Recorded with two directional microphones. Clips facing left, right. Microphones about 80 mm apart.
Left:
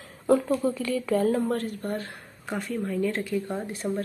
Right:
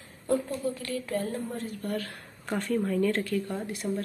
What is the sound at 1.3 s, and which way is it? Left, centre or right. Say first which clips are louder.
Speech: left 8 dB; left.